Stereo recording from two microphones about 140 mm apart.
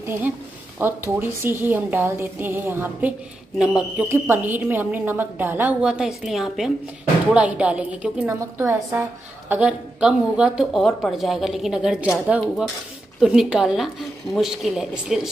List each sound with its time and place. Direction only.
0.7 s a woman's voice: 15° right (ahead or behind)
8.4 s a woman's voice: 20° right (ahead or behind); by 15.2 s 5° right (ahead or behind)